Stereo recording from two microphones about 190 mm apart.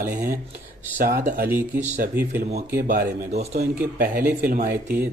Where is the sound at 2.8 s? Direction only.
40° right (ahead or behind).